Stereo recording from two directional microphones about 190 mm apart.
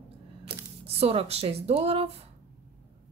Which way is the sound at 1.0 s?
30° right (ahead or behind).